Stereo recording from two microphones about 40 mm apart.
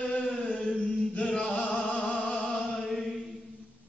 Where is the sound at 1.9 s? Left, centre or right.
Left.